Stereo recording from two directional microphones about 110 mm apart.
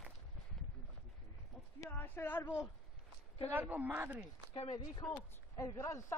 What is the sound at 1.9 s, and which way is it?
Speech, 15° left (ahead or behind).